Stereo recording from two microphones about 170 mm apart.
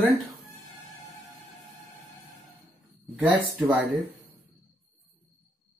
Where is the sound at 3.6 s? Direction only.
10° right (ahead or behind).